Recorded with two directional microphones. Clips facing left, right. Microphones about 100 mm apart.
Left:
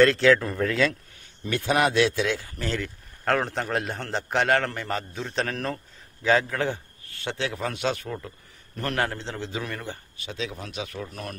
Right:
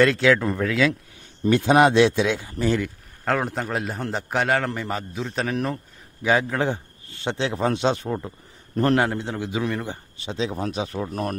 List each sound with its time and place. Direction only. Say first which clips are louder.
0.0 s a man's voice: even; 5° right (ahead or behind)
1.5 s a man's voice: right 7 dB; 25° right (ahead or behind)
3.3 s a man's voice: right 1 dB; 5° right (ahead or behind); by 11.3 s 40° right (ahead or behind)